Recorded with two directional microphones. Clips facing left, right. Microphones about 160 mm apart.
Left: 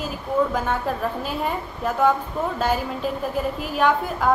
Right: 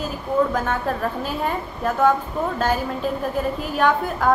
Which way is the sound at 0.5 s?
5° left (ahead or behind).